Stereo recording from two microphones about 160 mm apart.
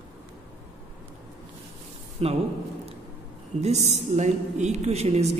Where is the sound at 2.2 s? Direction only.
40° right (ahead or behind).